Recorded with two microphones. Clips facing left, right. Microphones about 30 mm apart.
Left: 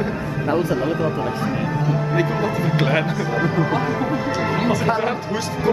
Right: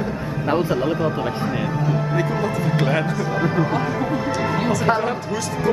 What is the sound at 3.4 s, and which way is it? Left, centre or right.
Speech, centre.